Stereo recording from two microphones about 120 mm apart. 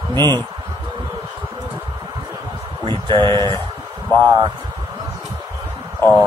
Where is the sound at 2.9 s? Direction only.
40° right (ahead or behind).